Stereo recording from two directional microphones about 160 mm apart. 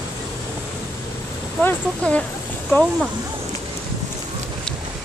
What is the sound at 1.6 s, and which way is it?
Speech, 10° left (ahead or behind).